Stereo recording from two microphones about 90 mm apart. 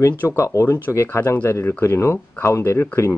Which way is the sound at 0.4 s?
35° left (ahead or behind).